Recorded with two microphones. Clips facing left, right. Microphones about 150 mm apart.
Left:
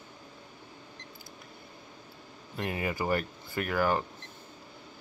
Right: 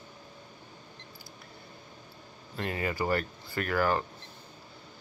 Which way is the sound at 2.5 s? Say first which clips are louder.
Even; 15° left (ahead or behind).